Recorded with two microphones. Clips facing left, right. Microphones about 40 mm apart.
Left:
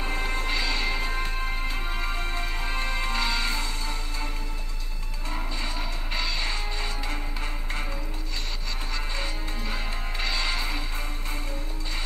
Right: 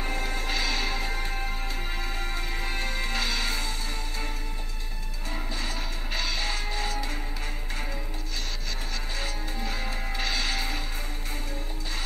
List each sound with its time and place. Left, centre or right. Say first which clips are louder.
0.0 s music: left 2 dB; left
0.5 s music: even; centre
1.0 s music: left 2 dB; left
3.2 s music: left 2 dB; centre
6.1 s music: even; centre
10.2 s music: left 1 dB; centre